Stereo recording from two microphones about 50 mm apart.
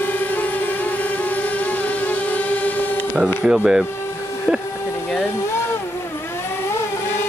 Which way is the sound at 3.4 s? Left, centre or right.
Right.